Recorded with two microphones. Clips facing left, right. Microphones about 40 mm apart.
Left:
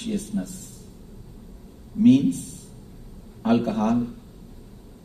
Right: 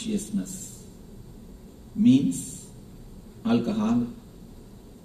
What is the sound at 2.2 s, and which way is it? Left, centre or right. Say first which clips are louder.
Speech: left 3 dB; right.